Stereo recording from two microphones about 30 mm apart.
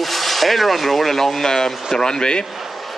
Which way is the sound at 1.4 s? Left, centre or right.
Centre.